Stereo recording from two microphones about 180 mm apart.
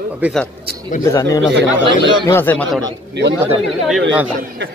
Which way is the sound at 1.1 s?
15° left (ahead or behind).